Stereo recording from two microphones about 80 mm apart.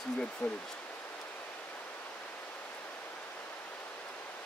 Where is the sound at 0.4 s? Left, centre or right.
Centre.